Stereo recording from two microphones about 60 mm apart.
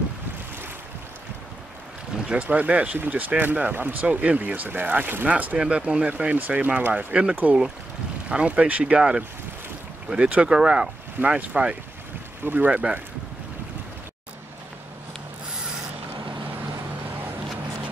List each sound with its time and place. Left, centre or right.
2.1 s boat: centre
2.4 s speech: right
5.6 s speech: centre
11.1 s speech: right